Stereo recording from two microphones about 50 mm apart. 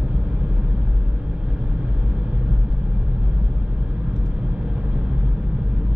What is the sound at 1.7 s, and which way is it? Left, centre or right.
Vehicle, centre.